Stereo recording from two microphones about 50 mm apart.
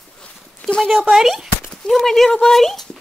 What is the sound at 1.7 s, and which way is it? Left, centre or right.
Speech, centre.